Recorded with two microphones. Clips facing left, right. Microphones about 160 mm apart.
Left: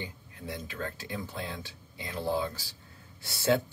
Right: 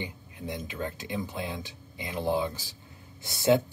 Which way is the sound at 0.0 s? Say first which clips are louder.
Right 3 dB; 15° right (ahead or behind).